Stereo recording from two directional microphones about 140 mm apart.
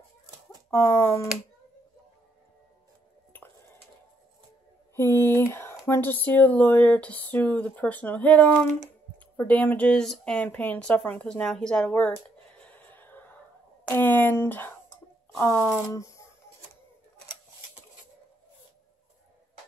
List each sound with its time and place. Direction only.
0.7 s speech: 20° left (ahead or behind)
4.9 s speech: 15° left (ahead or behind)
12.5 s a sound: 10° left (ahead or behind)
13.8 s speech: 15° left (ahead or behind)